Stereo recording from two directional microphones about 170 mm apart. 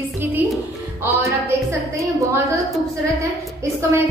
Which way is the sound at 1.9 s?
20° right (ahead or behind).